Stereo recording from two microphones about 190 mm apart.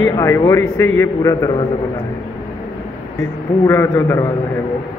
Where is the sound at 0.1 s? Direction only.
15° left (ahead or behind).